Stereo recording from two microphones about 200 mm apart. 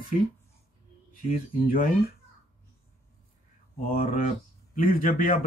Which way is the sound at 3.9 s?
40° left (ahead or behind).